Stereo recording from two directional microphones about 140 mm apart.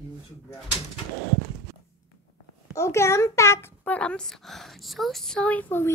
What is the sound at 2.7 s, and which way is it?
A child's voice, 20° left (ahead or behind).